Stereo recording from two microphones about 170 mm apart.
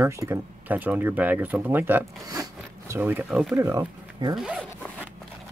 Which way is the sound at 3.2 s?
5° right (ahead or behind).